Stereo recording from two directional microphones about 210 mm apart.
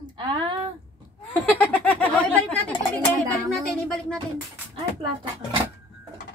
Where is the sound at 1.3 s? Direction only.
5° left (ahead or behind).